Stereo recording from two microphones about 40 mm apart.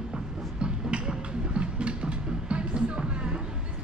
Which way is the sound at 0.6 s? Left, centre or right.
Centre.